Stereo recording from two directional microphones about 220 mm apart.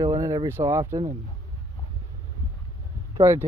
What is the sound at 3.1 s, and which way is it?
Speech, 15° right (ahead or behind).